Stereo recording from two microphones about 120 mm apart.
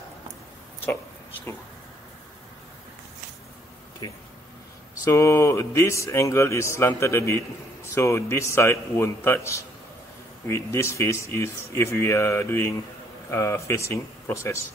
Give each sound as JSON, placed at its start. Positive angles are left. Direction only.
{"t": 5.0, "sound": "speech", "side_deg": 25}